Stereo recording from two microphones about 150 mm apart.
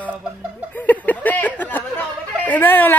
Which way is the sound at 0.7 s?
10° left (ahead or behind).